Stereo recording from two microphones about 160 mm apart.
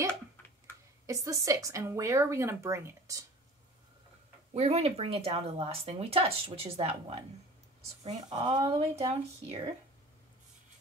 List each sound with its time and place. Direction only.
1.0 s speech: 20° right (ahead or behind)
4.6 s speech: 40° right (ahead or behind)